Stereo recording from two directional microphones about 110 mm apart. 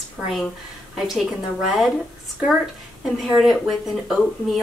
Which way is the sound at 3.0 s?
Centre (ahead or behind).